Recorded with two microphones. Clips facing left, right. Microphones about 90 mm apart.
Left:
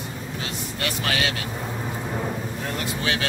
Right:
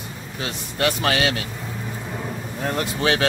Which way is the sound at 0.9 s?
30° right (ahead or behind).